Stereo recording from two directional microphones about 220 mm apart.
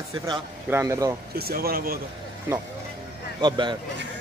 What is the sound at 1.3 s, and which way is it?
Speech, 45° right (ahead or behind).